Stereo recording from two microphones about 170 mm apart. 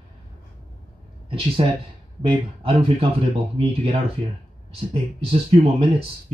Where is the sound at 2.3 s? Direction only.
30° right (ahead or behind).